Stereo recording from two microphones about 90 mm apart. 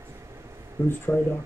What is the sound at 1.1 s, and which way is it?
Speech, 20° left (ahead or behind).